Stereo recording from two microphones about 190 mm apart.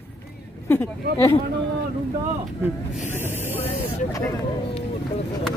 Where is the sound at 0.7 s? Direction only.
10° left (ahead or behind).